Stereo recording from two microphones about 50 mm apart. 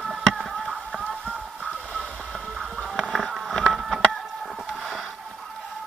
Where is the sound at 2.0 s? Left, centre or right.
Centre.